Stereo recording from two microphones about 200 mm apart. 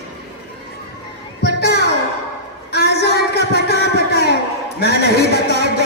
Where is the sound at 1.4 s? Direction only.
55° left (ahead or behind).